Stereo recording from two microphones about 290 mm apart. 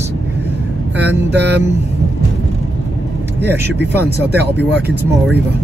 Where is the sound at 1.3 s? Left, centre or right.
Right.